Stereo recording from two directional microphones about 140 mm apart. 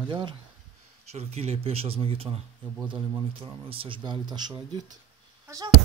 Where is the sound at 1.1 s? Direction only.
50° right (ahead or behind).